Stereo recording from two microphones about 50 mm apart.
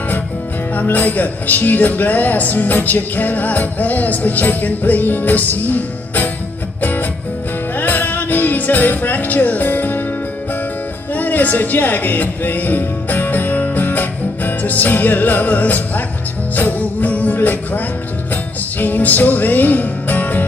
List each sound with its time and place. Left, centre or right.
0.7 s speech: left
6.8 s music: left
11.1 s speech: left
16.5 s music: left